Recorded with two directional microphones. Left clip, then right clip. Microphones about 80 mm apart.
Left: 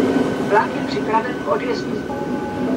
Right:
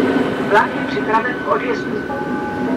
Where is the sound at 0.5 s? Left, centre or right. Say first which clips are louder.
Right 4 dB; left.